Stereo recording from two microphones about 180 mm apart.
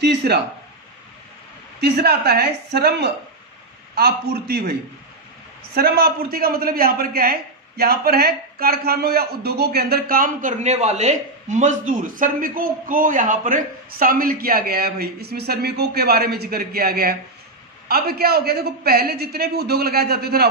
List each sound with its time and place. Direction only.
0.0 s speech: 70° right (ahead or behind)
1.8 s a man's voice: 60° right (ahead or behind)
5.8 s a man's voice: 60° right (ahead or behind)